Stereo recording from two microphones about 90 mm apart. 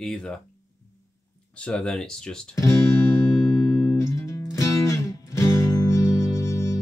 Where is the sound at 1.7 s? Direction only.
10° left (ahead or behind).